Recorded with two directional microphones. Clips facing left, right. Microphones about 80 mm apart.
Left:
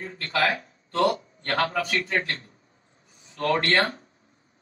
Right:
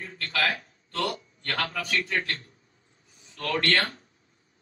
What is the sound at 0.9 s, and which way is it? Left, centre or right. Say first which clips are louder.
A man's voice: left 7 dB; left.